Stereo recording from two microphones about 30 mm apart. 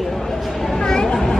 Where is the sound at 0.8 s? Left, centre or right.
Left.